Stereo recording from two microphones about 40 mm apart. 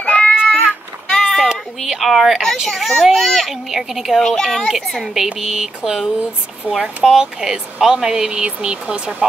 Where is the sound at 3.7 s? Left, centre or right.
Centre.